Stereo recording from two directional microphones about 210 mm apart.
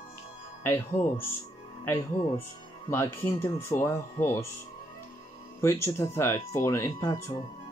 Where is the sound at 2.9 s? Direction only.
10° left (ahead or behind).